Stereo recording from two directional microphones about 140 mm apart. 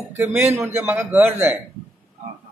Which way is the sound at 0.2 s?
15° right (ahead or behind).